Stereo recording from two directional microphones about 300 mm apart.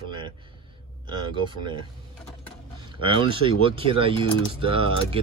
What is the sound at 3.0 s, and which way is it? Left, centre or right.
Speech, centre.